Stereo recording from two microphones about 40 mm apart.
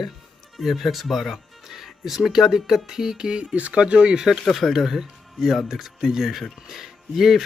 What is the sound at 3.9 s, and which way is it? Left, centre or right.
Speech, centre.